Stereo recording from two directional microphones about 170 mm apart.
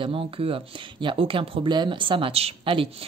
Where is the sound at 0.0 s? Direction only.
30° right (ahead or behind).